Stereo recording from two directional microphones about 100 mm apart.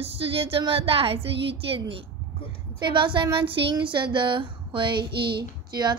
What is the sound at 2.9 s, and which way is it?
Speech, 55° right (ahead or behind).